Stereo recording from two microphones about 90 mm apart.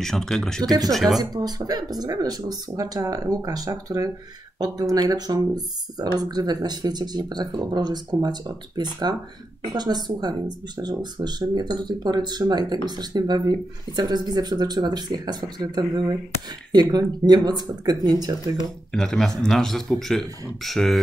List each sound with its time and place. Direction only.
0.0 s speech: 5° left (ahead or behind)
0.7 s speech: 45° right (ahead or behind)
0.9 s speech: centre (ahead or behind)
1.2 s speech: 45° right (ahead or behind)
18.9 s speech: 5° left (ahead or behind)